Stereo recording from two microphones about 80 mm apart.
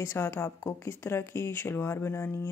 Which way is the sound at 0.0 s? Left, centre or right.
Left.